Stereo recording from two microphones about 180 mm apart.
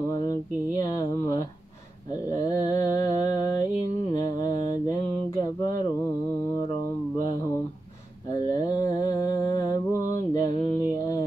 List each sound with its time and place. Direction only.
0.7 s speech: 20° left (ahead or behind)
2.3 s mantra: 20° left (ahead or behind)
8.6 s mantra: 20° left (ahead or behind)